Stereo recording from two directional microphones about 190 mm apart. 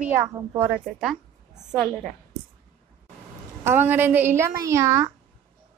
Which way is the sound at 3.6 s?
10° right (ahead or behind).